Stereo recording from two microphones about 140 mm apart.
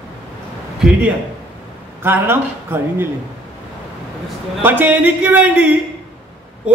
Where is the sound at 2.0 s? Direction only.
15° right (ahead or behind).